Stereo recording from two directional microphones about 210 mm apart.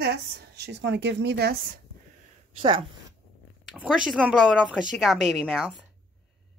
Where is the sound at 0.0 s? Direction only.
50° right (ahead or behind).